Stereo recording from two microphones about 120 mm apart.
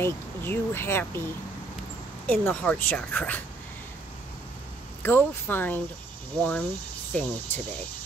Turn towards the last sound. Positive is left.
turn(degrees=10)  # may be behind; listen again after turning